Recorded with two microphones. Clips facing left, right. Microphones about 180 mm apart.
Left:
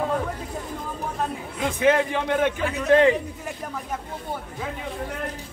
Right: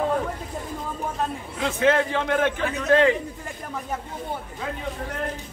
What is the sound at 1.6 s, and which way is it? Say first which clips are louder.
A man's voice: left 1 dB; 15° left (ahead or behind).